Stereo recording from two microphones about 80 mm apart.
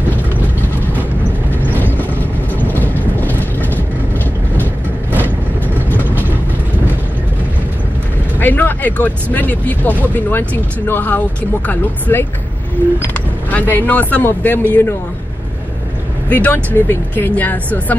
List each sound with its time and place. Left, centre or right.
1.5 s vehicle: left
2.5 s train: left
8.4 s a man's voice: left
16.3 s speech: centre